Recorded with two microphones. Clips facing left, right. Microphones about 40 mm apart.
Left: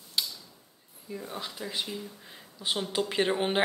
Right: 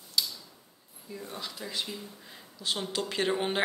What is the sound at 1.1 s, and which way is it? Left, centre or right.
Speech, centre.